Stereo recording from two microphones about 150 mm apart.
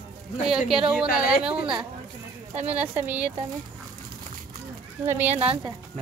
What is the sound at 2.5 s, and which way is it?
Speech, 45° right (ahead or behind).